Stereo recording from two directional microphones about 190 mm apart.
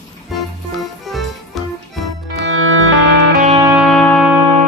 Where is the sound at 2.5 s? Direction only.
90° right.